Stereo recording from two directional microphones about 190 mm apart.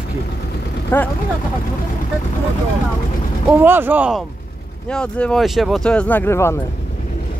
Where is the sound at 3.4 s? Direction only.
10° right (ahead or behind).